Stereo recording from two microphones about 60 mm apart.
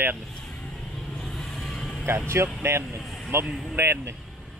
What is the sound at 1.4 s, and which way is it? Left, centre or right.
Vehicle, centre.